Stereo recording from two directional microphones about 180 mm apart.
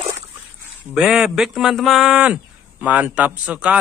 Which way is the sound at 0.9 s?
Centre (ahead or behind).